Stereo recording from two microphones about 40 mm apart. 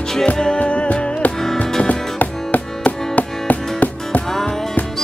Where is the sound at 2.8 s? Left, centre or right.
Left.